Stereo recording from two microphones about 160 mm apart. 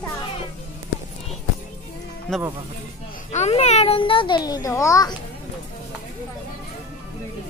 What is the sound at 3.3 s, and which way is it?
A child's voice, 45° left (ahead or behind).